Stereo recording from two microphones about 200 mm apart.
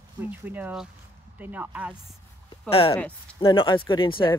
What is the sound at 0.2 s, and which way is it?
Speech, 10° right (ahead or behind).